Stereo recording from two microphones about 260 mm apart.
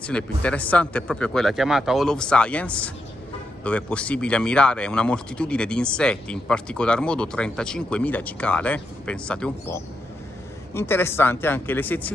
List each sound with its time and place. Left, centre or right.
0.0 s speech: centre